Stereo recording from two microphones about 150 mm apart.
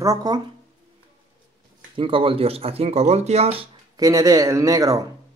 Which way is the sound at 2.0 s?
35° right (ahead or behind).